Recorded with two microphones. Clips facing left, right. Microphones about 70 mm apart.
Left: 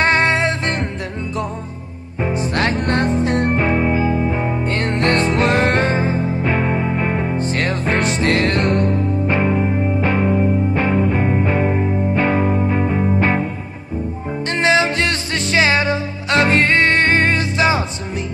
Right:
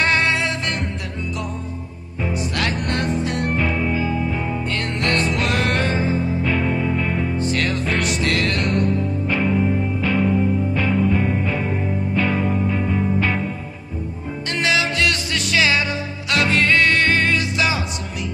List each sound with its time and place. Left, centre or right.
0.0 s music: left
2.2 s music: left
14.5 s music: left